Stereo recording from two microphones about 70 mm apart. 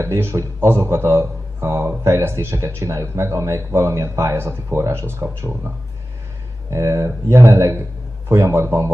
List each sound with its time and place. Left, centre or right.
0.0 s a man's voice: right
6.7 s a man's voice: right